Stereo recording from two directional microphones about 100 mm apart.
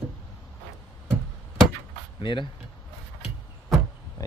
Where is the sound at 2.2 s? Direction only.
55° left (ahead or behind).